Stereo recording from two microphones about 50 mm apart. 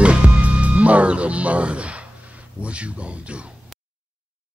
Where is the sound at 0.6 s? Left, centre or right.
Right.